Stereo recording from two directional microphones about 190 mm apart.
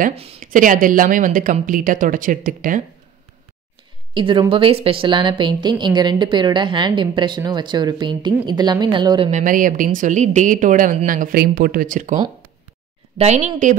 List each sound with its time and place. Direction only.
0.0 s speech: 30° right (ahead or behind)
0.4 s a woman's voice: 45° right (ahead or behind)
4.1 s a woman's voice: 25° right (ahead or behind)
9.3 s a woman's voice: 45° right (ahead or behind)
13.2 s speech: 35° right (ahead or behind)